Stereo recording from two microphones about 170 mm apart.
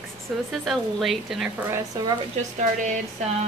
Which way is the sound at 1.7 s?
20° right (ahead or behind).